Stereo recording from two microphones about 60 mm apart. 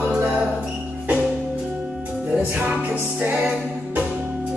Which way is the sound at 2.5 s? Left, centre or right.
Centre.